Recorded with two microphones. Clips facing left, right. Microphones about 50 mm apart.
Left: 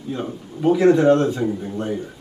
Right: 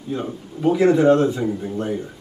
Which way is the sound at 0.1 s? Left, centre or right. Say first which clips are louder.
Right 1 dB; centre.